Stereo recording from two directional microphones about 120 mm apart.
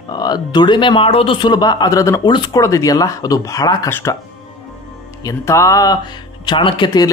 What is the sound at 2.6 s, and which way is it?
Speech, 30° left (ahead or behind).